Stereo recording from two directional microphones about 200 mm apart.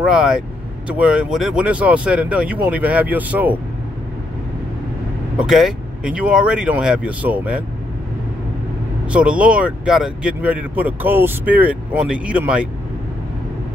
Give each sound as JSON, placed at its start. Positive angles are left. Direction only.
{"t": 0.0, "sound": "speech", "side_deg": -5}
{"t": 5.4, "sound": "speech", "side_deg": 0}
{"t": 9.1, "sound": "speech", "side_deg": -5}